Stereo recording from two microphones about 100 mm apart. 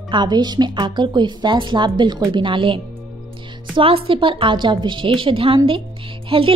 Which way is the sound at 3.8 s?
60° right (ahead or behind).